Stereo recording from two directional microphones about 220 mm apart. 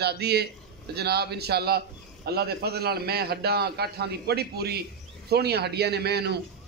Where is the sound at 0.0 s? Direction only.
45° right (ahead or behind).